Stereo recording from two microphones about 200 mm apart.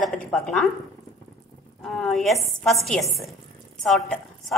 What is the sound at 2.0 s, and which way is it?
A woman's voice, centre (ahead or behind).